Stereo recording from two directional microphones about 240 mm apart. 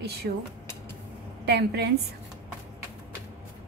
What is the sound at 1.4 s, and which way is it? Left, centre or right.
Speech, right.